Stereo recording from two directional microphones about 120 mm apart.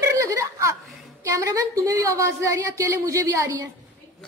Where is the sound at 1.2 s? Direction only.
25° right (ahead or behind).